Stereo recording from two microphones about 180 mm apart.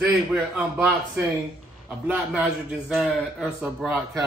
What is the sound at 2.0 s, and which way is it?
A man's voice, 5° right (ahead or behind).